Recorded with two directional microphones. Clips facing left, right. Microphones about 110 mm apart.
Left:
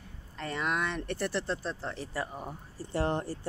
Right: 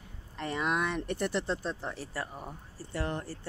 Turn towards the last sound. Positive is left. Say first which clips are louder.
# left 5 dB
turn(degrees=30)  # may be behind; listen again after turning